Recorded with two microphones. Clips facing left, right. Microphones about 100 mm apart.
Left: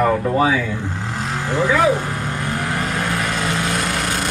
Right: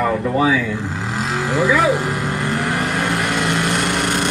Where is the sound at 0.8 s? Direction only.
90° right; by 2.9 s 75° right (ahead or behind).